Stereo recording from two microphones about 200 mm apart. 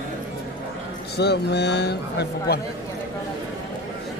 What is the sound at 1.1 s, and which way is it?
A man's voice, 55° left (ahead or behind).